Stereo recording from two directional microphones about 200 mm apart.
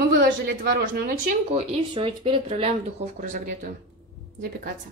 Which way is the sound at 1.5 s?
30° right (ahead or behind).